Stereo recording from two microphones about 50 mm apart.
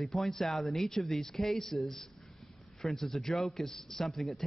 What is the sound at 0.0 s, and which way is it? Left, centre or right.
A man's voice, centre.